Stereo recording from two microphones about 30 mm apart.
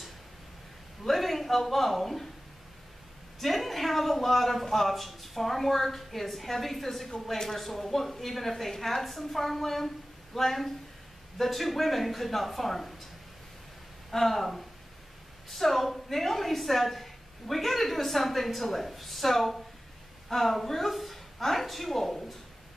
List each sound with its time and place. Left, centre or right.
1.0 s a man's voice: centre
3.3 s a woman's voice: centre
14.1 s a woman's voice: centre